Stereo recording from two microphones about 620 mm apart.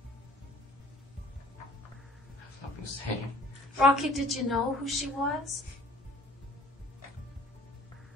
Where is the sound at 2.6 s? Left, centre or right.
Left.